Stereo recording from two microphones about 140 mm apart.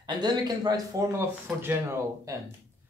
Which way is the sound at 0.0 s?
30° right (ahead or behind).